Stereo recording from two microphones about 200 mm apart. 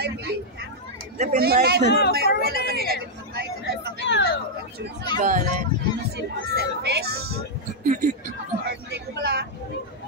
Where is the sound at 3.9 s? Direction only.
65° left (ahead or behind).